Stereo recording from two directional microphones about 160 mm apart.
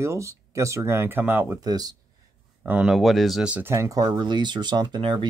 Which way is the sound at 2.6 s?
10° right (ahead or behind).